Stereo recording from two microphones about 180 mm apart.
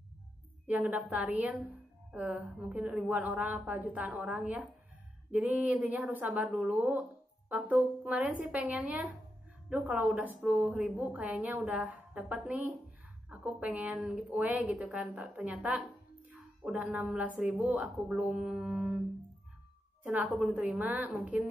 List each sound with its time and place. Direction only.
0.7 s a woman's voice: 10° right (ahead or behind)
20.1 s speech: 5° right (ahead or behind)